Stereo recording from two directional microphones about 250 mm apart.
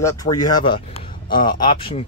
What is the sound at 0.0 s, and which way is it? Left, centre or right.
Speech, centre.